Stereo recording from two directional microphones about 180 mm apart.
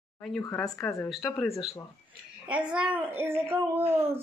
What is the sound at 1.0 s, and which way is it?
Speech, centre (ahead or behind).